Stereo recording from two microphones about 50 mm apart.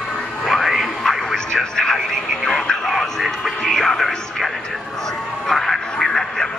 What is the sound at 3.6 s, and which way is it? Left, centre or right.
Music, centre.